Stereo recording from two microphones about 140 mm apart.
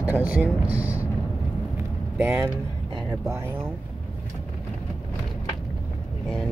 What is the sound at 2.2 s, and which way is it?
Speech, 10° right (ahead or behind).